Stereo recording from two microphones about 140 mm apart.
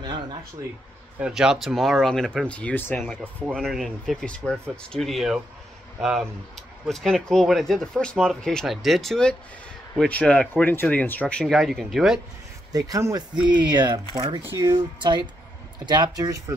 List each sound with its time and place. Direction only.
0.0 s speech: 30° right (ahead or behind)
1.2 s speech: 5° right (ahead or behind); by 3.0 s 10° left (ahead or behind)
3.0 s speech: centre (ahead or behind)
12.7 s speech: 25° right (ahead or behind)